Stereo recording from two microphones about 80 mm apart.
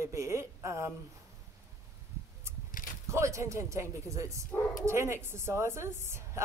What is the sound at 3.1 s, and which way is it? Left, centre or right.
A woman's voice, right.